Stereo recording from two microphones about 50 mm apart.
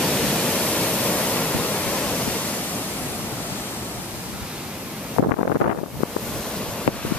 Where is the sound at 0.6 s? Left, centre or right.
Left.